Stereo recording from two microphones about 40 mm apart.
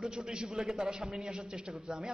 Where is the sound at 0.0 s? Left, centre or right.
Centre.